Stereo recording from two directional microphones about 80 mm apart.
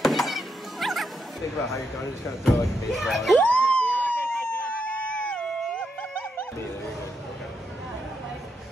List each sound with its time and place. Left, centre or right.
0.0 s music: centre
1.7 s speech: centre
3.3 s a sound: centre